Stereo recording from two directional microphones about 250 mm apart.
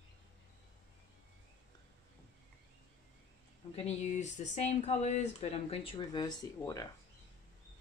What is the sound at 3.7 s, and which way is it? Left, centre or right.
Speech, left.